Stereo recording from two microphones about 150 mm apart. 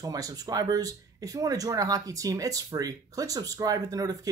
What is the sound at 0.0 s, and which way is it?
Speech, 25° right (ahead or behind).